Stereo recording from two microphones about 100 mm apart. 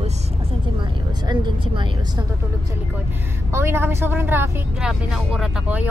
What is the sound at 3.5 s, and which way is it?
Speech, 25° right (ahead or behind).